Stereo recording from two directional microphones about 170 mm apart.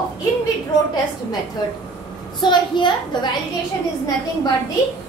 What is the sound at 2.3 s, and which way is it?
Speech, 25° left (ahead or behind).